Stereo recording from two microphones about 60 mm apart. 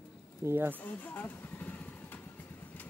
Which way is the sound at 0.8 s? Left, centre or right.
Left.